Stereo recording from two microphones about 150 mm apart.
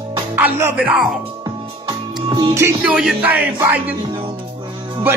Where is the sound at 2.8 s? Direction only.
5° right (ahead or behind).